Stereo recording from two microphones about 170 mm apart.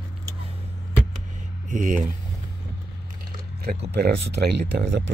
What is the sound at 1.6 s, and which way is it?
Speech, 50° right (ahead or behind).